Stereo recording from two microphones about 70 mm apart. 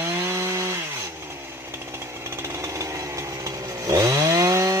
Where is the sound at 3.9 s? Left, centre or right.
Right.